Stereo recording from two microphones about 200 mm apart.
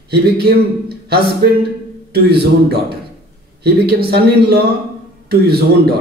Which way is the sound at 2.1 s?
50° right (ahead or behind).